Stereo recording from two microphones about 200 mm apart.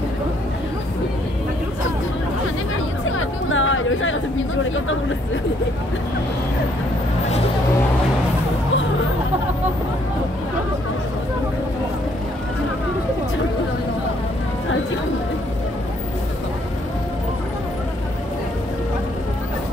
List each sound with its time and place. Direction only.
3.1 s chatter: 85° left